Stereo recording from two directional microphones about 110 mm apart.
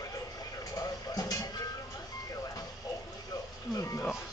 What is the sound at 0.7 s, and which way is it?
Vehicle, 35° left (ahead or behind).